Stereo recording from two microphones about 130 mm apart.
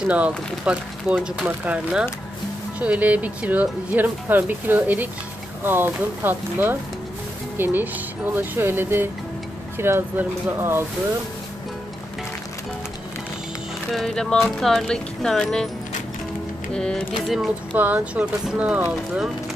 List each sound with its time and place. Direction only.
0.0 s speech: 10° right (ahead or behind)
13.9 s speech: 5° left (ahead or behind)
16.7 s speech: 5° left (ahead or behind)
17.7 s speech: 10° right (ahead or behind)